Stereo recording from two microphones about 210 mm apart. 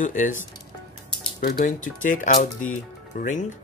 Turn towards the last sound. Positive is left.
turn(degrees=35)  # may be behind; listen again after turning